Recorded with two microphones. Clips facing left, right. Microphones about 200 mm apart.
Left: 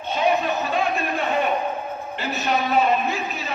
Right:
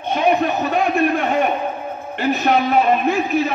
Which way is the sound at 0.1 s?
55° right (ahead or behind).